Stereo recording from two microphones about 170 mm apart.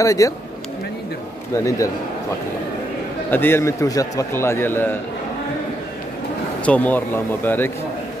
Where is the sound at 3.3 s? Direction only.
15° left (ahead or behind).